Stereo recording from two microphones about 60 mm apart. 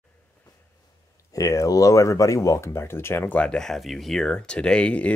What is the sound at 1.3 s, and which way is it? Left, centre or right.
Speech, left.